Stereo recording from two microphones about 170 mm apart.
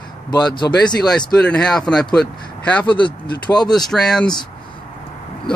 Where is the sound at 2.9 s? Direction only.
30° left (ahead or behind).